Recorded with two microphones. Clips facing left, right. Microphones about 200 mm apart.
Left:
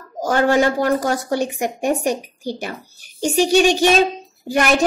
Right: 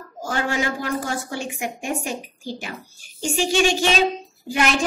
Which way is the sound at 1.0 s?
40° left (ahead or behind).